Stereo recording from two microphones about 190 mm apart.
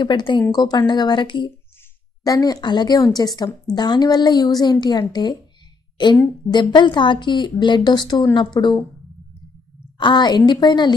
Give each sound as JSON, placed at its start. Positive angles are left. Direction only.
{"t": 0.0, "sound": "a woman's voice", "side_deg": 25}
{"t": 6.5, "sound": "a woman's voice", "side_deg": 25}
{"t": 9.9, "sound": "a woman's voice", "side_deg": 25}